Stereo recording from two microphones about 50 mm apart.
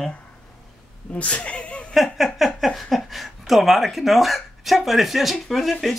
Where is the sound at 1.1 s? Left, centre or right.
Left.